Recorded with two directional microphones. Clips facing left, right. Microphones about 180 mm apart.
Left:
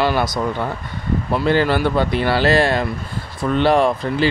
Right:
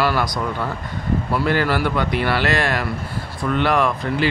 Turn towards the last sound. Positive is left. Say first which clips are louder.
# left 3 dB
turn(degrees=30)  # may be behind; listen again after turning